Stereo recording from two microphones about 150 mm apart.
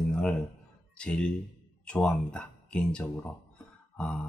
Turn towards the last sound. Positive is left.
turn(degrees=5)  # may be behind; listen again after turning